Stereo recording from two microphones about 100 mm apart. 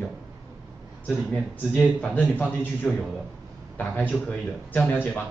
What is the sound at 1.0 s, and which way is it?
Speech, 15° left (ahead or behind).